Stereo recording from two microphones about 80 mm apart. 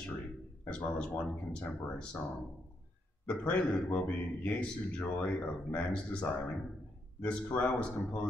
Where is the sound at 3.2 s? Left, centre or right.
Centre.